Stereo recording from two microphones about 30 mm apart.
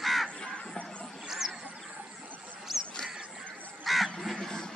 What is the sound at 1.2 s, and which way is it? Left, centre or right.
Duck, centre.